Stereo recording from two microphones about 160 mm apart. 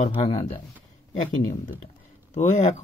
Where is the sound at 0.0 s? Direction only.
35° left (ahead or behind).